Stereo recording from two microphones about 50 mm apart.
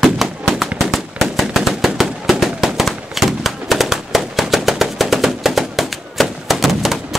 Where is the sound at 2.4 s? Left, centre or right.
Centre.